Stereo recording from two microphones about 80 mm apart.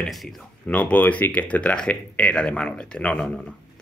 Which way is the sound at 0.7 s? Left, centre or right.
Centre.